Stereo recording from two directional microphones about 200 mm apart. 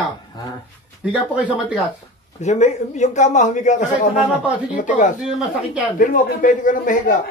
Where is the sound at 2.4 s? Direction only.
35° left (ahead or behind).